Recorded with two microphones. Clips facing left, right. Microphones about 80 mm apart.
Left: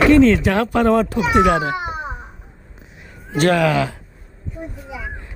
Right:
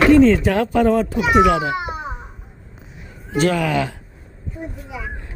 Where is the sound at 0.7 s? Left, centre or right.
Left.